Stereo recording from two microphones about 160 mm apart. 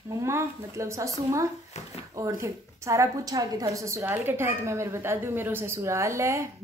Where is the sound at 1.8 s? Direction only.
45° left (ahead or behind).